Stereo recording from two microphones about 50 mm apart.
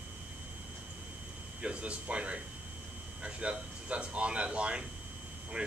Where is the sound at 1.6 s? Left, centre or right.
Right.